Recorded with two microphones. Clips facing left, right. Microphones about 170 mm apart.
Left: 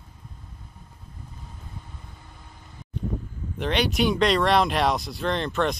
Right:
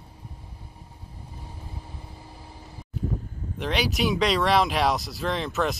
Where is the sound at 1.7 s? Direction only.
30° right (ahead or behind).